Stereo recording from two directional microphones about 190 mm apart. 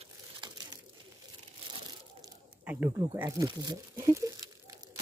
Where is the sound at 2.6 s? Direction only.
10° right (ahead or behind).